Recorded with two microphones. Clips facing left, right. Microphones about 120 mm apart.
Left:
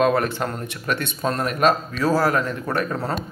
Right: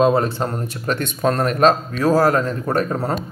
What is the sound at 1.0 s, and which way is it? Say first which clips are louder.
Speech: right 7 dB; 50° right (ahead or behind).